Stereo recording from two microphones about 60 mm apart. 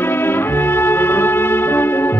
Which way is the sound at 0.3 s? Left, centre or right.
Left.